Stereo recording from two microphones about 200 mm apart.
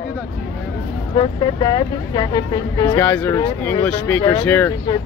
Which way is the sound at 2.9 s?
10° left (ahead or behind).